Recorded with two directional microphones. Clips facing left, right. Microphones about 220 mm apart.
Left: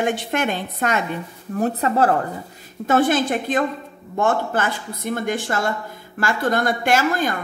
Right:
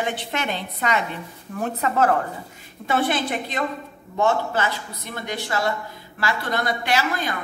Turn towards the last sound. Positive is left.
turn(degrees=50)  # may be behind; listen again after turning